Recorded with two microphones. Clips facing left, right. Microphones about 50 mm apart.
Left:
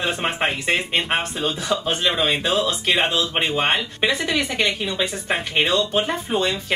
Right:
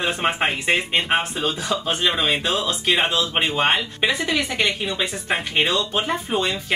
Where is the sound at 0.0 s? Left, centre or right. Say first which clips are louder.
Right 1 dB; centre.